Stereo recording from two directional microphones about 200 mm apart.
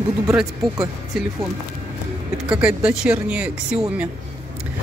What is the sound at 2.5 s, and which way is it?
Speech, 5° right (ahead or behind).